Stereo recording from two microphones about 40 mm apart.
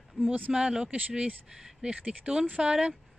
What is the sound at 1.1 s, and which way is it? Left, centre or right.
Speech, right.